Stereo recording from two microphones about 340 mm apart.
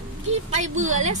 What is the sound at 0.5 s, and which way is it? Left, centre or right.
Speech, right.